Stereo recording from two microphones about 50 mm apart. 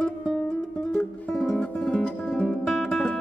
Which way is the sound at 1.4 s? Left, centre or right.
Left.